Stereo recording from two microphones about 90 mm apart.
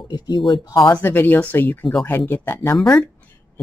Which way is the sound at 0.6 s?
40° left (ahead or behind).